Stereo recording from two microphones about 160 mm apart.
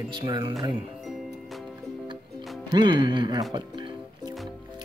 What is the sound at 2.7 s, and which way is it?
Speech, 30° right (ahead or behind).